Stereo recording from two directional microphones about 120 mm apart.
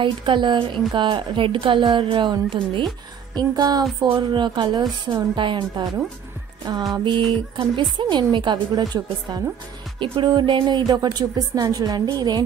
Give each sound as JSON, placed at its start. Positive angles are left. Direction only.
{"t": 0.0, "sound": "a woman's voice", "side_deg": -40}
{"t": 6.9, "sound": "speech", "side_deg": -45}